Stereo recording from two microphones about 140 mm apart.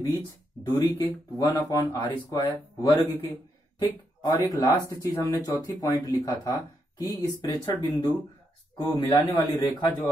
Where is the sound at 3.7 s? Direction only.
25° left (ahead or behind).